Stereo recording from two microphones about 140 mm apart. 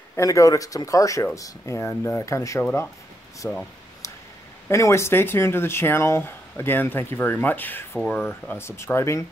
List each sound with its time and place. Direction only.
0.1 s speech: 25° left (ahead or behind)
4.6 s speech: 20° left (ahead or behind)